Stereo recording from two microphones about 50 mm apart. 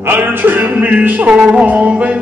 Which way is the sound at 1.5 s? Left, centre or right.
Right.